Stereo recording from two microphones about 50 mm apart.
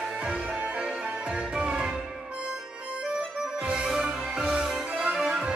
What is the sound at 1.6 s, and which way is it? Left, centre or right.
Music, centre.